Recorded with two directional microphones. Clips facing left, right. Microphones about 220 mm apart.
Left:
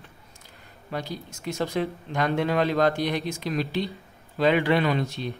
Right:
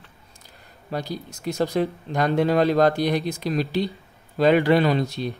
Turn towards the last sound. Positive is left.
turn(degrees=-35)  # may be behind; listen again after turning